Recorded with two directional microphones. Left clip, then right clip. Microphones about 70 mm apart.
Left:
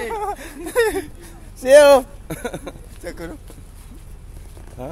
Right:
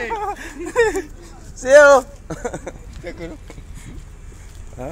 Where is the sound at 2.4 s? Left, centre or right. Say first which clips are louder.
Right 2 dB; left.